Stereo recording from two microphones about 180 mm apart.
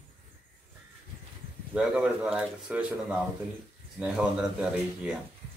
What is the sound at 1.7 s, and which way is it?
Speech, 5° right (ahead or behind).